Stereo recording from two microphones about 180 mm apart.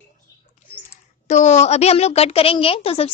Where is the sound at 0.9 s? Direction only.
40° left (ahead or behind).